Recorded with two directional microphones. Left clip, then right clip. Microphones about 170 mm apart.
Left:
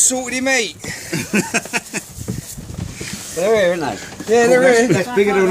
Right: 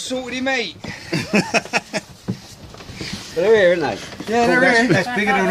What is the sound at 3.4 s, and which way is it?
Speech, 15° right (ahead or behind).